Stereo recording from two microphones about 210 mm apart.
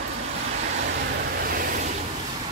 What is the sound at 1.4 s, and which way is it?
Vehicle, 45° right (ahead or behind).